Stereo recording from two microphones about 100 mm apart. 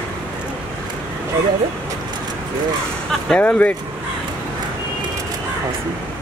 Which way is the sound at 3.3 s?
15° left (ahead or behind).